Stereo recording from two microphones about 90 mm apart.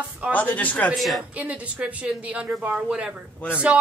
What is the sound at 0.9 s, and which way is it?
Speech, centre (ahead or behind).